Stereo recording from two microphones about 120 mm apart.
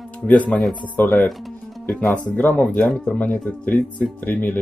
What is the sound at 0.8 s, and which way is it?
Speech, 15° left (ahead or behind).